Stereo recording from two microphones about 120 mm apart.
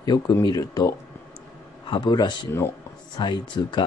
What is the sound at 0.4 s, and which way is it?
Speech, 35° left (ahead or behind).